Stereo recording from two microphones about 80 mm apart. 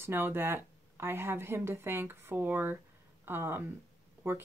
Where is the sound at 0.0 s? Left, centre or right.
Right.